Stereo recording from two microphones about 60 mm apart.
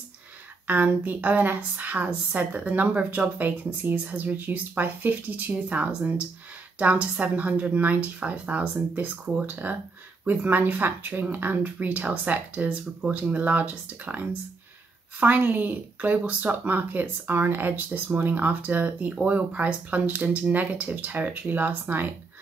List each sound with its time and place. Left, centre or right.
0.7 s speech: right